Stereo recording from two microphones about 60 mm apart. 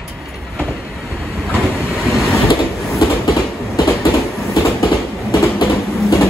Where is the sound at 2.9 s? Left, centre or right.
Left.